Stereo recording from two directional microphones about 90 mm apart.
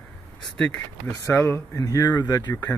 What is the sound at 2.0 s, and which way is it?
Speech, 50° left (ahead or behind).